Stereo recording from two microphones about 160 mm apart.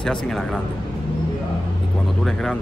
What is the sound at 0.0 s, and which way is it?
Speech, 5° left (ahead or behind).